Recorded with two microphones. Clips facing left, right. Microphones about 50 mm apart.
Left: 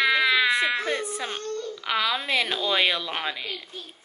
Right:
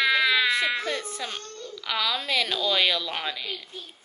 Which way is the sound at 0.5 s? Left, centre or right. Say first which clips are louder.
Left 2 dB; centre.